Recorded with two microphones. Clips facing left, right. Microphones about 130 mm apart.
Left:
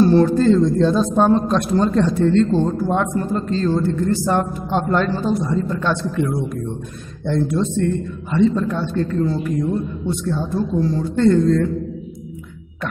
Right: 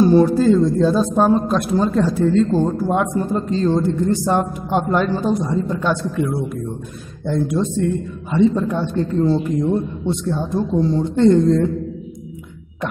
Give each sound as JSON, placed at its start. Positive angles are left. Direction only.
{"t": 0.0, "sound": "a man's voice", "side_deg": -10}